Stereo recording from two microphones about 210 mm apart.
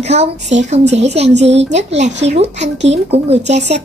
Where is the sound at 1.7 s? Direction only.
35° right (ahead or behind).